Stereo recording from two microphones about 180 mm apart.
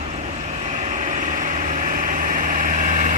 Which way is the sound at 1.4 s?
45° right (ahead or behind).